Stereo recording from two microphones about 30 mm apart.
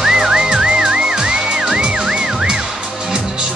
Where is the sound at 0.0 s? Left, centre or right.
Right.